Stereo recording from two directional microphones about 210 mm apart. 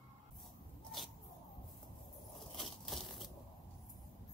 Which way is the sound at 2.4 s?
Centre (ahead or behind).